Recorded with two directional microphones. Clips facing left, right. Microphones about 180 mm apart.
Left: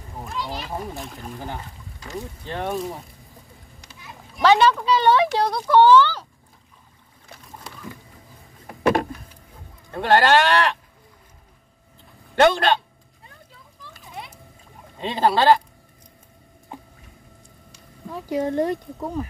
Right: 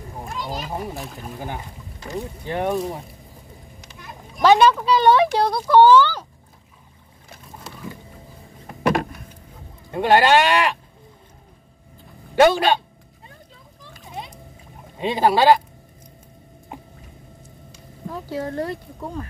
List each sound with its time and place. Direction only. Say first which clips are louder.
0.4 s a child's voice: even; 45° right (ahead or behind)
0.7 s speech: right 2 dB; 10° right (ahead or behind)
4.4 s speech: right 2 dB; 10° right (ahead or behind)
9.8 s speech: right 2 dB; 15° right (ahead or behind)
12.4 s speech: right 2 dB; 10° right (ahead or behind)
14.0 s splash: right 3 dB; 20° right (ahead or behind)
15.0 s speech: right 2 dB; 15° right (ahead or behind)
18.2 s speech: left 5 dB; 20° left (ahead or behind)